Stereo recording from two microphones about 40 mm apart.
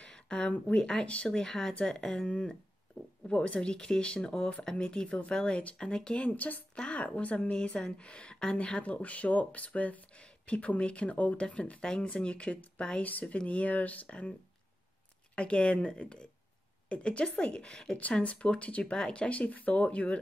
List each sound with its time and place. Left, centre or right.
0.0 s a sound: left
0.5 s speech: left
1.3 s speech: centre
3.3 s speech: left
5.8 s speech: centre
6.3 s speech: left
6.7 s a woman's voice: left
13.0 s a woman's voice: left
15.3 s speech: left
18.2 s a woman's voice: left